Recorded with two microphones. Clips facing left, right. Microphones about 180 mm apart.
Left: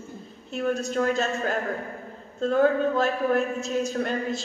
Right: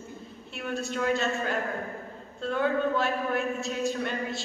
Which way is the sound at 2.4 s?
40° left (ahead or behind).